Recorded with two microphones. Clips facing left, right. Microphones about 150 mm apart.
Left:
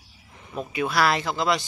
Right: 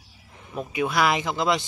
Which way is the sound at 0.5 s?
15° right (ahead or behind).